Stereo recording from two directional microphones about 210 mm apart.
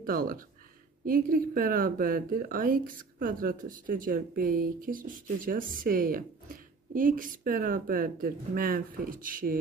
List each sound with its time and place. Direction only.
0.0 s speech: 40° right (ahead or behind)